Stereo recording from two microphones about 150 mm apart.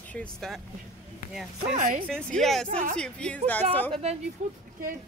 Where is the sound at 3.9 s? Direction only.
45° right (ahead or behind).